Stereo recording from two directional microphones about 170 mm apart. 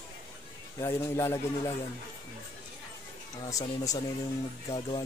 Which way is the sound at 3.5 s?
20° left (ahead or behind).